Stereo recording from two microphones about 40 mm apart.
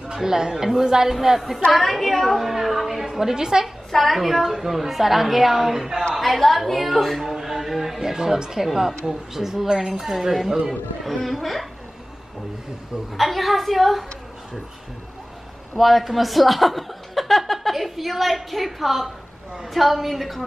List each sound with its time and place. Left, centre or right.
0.1 s a woman's voice: centre
1.7 s a woman's voice: centre
3.6 s a woman's voice: centre
13.1 s a woman's voice: centre
15.8 s a woman's voice: centre